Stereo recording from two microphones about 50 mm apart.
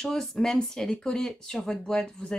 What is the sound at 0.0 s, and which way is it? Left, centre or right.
Speech, centre.